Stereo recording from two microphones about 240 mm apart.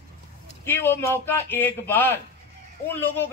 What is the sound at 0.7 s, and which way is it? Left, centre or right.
Speech, centre.